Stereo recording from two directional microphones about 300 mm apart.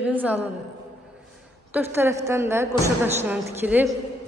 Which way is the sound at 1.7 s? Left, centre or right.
Centre.